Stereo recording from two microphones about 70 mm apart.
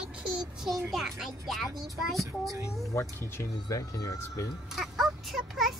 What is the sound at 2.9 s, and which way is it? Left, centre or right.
Speech, left.